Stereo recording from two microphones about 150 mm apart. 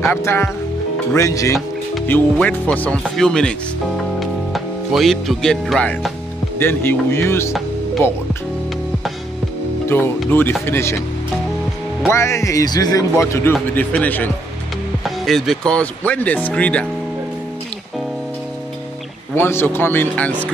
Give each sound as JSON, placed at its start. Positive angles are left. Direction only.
{"t": 0.0, "sound": "speech", "side_deg": 15}
{"t": 2.0, "sound": "speech", "side_deg": 10}
{"t": 6.6, "sound": "speech", "side_deg": 15}
{"t": 9.8, "sound": "speech", "side_deg": 15}
{"t": 12.1, "sound": "speech", "side_deg": 20}
{"t": 15.0, "sound": "speech", "side_deg": 0}
{"t": 19.3, "sound": "speech", "side_deg": 15}